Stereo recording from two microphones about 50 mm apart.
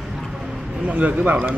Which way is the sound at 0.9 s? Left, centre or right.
Right.